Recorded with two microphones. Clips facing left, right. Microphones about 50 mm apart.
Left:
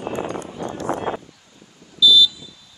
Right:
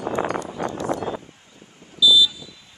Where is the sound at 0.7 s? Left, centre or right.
Left.